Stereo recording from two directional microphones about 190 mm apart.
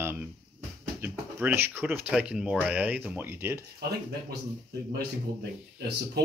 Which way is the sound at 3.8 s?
55° right (ahead or behind).